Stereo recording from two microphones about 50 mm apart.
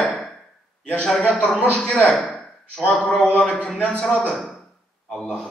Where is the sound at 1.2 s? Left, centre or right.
Left.